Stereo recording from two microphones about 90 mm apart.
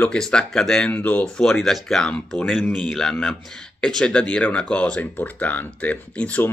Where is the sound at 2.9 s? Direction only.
5° left (ahead or behind).